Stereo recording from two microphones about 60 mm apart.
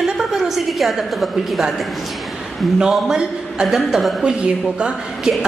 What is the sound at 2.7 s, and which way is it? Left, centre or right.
A man's voice, centre.